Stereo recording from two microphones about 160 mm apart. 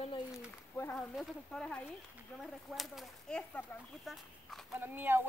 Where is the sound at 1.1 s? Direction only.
5° left (ahead or behind).